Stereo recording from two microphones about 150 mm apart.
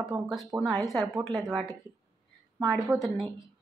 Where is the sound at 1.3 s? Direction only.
Centre (ahead or behind).